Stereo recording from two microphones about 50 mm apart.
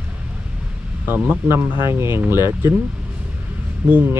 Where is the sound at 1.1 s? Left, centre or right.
Right.